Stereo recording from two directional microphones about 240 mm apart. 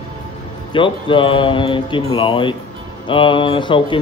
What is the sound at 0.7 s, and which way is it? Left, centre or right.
Speech, left.